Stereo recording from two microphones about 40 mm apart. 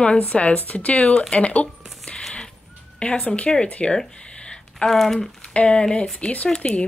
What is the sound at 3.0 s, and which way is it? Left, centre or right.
Speech, left.